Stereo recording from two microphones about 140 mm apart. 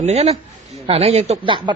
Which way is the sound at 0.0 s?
50° right (ahead or behind).